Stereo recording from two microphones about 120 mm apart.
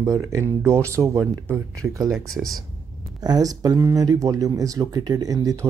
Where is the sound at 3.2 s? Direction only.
30° right (ahead or behind).